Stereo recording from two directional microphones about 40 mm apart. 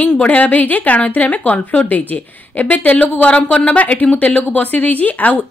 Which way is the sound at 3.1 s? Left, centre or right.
Left.